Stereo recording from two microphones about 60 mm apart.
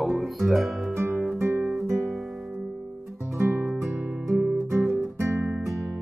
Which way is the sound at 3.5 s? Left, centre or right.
Right.